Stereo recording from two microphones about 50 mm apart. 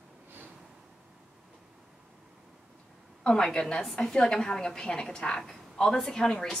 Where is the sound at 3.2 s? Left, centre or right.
Centre.